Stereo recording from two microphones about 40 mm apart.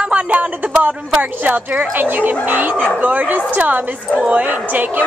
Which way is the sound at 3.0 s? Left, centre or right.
Right.